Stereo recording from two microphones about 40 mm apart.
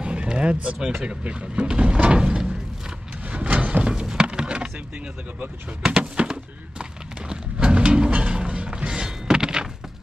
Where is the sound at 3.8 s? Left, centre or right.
Right.